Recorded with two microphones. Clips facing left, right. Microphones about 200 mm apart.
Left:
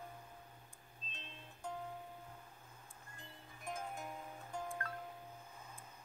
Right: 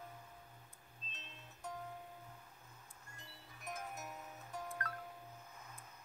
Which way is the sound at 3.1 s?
30° left (ahead or behind).